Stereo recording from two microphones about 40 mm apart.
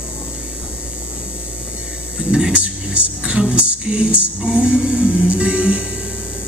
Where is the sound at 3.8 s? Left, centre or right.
Right.